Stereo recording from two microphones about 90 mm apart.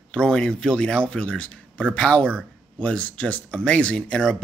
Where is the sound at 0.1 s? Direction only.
10° left (ahead or behind).